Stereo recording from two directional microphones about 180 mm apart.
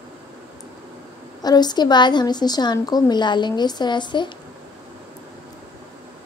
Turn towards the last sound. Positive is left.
turn(degrees=25)  # may be behind; listen again after turning